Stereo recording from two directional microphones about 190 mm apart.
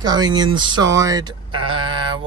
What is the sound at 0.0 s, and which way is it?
Speech, 20° right (ahead or behind).